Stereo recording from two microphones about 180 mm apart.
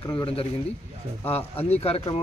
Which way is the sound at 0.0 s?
25° left (ahead or behind).